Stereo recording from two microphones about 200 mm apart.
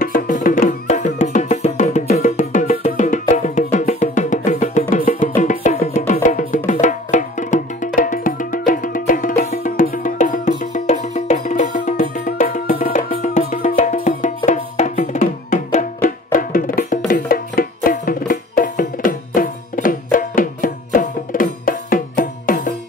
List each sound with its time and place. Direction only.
0.0 s music: 45° left (ahead or behind)